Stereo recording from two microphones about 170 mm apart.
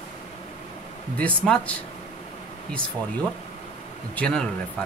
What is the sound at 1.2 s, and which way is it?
Speech, 5° left (ahead or behind).